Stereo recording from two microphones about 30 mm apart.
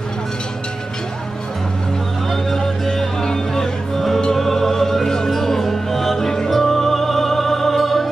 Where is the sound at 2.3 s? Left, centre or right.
Centre.